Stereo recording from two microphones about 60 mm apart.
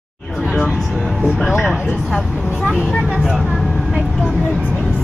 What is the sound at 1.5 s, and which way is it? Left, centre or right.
A woman's voice, centre.